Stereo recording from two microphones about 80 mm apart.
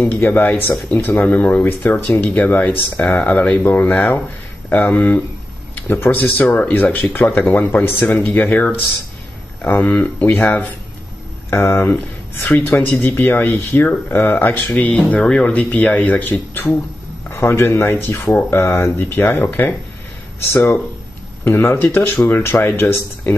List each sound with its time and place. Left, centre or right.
0.2 s speech: left
3.6 s speech: left
11.5 s speech: left
11.9 s speech: left
17.3 s speech: left
20.5 s speech: centre
21.5 s speech: left